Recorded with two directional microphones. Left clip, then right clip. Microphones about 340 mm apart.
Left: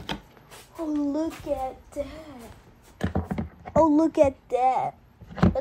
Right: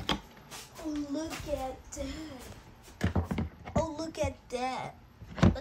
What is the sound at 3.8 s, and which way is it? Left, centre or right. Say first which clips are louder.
Speech: left 16 dB; centre.